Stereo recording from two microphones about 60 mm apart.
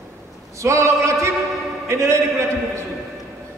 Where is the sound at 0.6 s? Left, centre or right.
Right.